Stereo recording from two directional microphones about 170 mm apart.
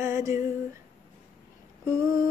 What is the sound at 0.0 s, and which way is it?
Female singing, 15° right (ahead or behind).